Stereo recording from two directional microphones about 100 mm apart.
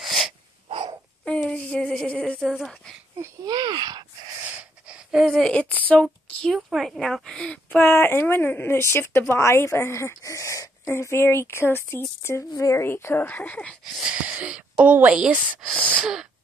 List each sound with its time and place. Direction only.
0.0 s sneeze: centre (ahead or behind)
0.7 s a sound: 65° right (ahead or behind)
1.2 s a sound: 10° left (ahead or behind)
3.4 s speech: 45° right (ahead or behind)
4.6 s wheeze: 10° right (ahead or behind)
5.2 s speech: 5° left (ahead or behind)
6.4 s speech: centre (ahead or behind)
14.2 s speech: 15° right (ahead or behind)
15.7 s speech: 15° left (ahead or behind)
16.0 s wheeze: 5° right (ahead or behind)